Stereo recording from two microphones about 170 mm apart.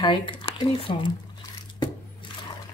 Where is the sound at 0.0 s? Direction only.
30° left (ahead or behind).